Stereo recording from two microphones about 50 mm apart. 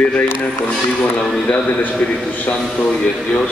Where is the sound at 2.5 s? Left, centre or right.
Left.